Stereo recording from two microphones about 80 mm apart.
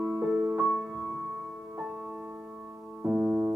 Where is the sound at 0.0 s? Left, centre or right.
Centre.